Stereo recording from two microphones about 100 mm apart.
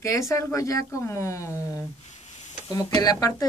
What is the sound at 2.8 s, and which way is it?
Speech, 40° left (ahead or behind).